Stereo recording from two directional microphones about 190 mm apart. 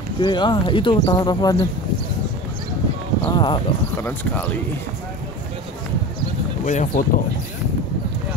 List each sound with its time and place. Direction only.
0.2 s speech: 25° left (ahead or behind)
3.3 s clip-clop: 25° left (ahead or behind)
4.0 s speech: 10° left (ahead or behind)
6.6 s speech: 40° left (ahead or behind)